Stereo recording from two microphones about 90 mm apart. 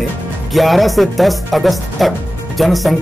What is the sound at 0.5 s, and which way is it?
Speech, centre (ahead or behind).